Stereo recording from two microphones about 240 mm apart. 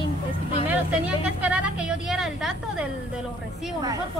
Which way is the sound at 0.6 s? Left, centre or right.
Centre.